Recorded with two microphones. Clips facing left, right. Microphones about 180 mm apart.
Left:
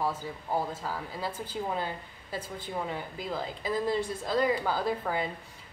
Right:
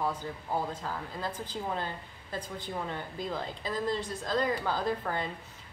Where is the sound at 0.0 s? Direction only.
10° left (ahead or behind).